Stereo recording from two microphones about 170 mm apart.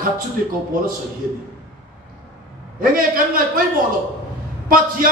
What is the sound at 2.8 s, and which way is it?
Speech, 55° right (ahead or behind).